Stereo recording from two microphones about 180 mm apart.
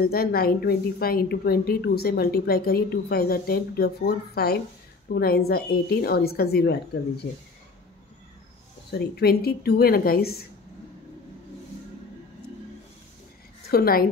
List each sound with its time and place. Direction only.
0.0 s a woman's voice: 60° left (ahead or behind)
8.9 s a woman's voice: 60° left (ahead or behind)
13.7 s a woman's voice: 55° left (ahead or behind)